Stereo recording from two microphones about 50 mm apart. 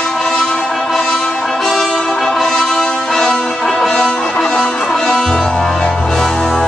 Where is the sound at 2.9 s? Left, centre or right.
Centre.